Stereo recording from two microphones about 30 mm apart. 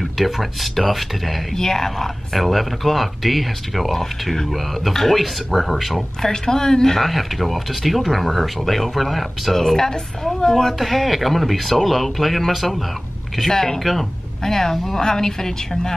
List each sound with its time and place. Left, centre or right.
0.0 s speech: centre
1.5 s speech: centre
3.9 s speech: centre
6.2 s speech: left
7.0 s speech: centre
13.5 s speech: centre